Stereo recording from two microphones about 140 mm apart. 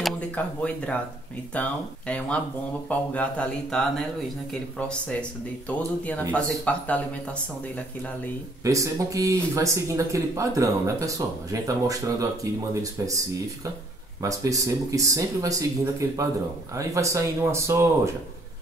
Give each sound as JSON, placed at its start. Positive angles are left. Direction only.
{"t": 0.4, "sound": "speech", "side_deg": 10}
{"t": 8.6, "sound": "speech", "side_deg": -25}
{"t": 14.2, "sound": "speech", "side_deg": -25}